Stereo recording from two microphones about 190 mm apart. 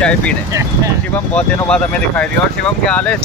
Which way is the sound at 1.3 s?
5° left (ahead or behind).